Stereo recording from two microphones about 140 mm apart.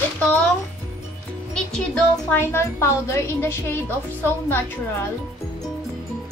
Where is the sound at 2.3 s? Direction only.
15° left (ahead or behind).